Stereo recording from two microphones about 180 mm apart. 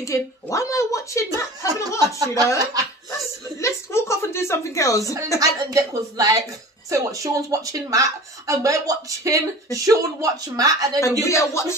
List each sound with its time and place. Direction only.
0.0 s a woman's voice: 15° left (ahead or behind)
1.7 s a woman's voice: 20° right (ahead or behind)
3.1 s a sound: 15° left (ahead or behind)
5.4 s a woman's voice: 20° right (ahead or behind)
11.2 s a woman's voice: 15° left (ahead or behind)